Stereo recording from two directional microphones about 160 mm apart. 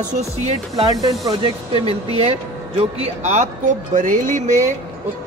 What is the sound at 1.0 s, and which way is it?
Speech, 25° right (ahead or behind).